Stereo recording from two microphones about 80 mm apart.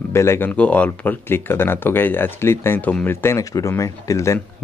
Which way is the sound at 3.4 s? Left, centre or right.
Left.